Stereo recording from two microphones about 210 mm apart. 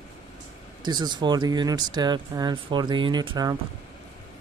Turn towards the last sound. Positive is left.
turn(degrees=-20)  # may be behind; listen again after turning